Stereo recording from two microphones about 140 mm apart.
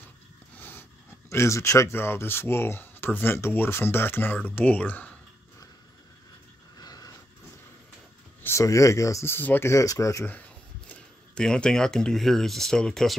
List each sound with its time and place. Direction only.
0.6 s a sound: 15° left (ahead or behind)
1.3 s speech: 20° left (ahead or behind)
6.8 s vehicle: 25° left (ahead or behind)
8.4 s speech: 20° left (ahead or behind)
10.9 s speech: 5° left (ahead or behind)